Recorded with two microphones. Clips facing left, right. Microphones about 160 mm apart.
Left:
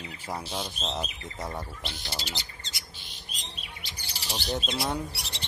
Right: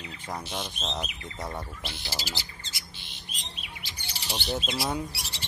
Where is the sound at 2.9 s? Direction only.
40° left (ahead or behind).